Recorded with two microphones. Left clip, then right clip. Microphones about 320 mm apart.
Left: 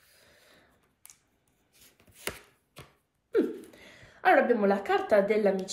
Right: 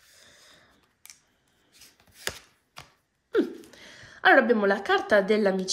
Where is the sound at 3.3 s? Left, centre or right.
Right.